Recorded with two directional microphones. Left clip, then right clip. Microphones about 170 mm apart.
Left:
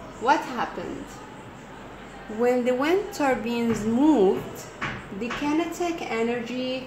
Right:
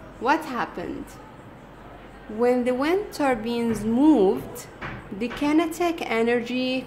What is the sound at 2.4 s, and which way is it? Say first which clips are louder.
A woman's voice: right 1 dB; 10° right (ahead or behind).